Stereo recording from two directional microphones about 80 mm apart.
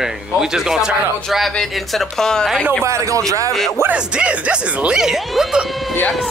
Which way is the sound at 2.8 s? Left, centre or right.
Right.